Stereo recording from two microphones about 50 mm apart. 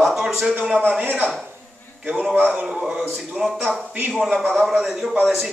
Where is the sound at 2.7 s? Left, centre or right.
Centre.